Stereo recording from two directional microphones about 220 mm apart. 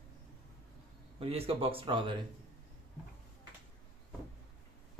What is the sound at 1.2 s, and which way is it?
Speech, 25° right (ahead or behind).